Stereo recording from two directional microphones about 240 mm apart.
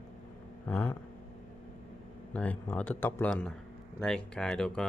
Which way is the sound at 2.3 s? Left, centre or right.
Centre.